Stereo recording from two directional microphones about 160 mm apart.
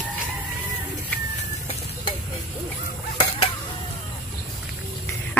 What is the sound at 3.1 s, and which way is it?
Dishes, 30° left (ahead or behind).